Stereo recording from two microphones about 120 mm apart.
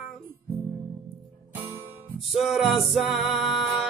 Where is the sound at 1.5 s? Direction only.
20° right (ahead or behind).